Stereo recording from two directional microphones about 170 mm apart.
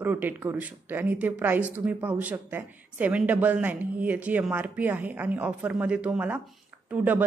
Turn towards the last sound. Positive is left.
turn(degrees=-10)  # may be behind; listen again after turning